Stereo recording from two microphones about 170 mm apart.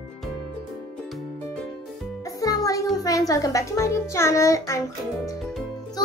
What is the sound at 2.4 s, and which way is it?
Music, 20° left (ahead or behind).